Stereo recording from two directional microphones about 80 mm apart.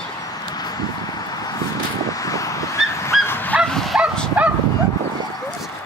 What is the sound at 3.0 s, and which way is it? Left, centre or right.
Honk, left.